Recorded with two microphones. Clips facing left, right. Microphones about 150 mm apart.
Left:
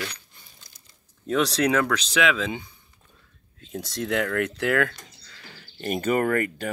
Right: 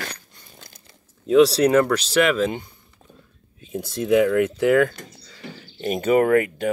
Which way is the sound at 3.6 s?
5° right (ahead or behind).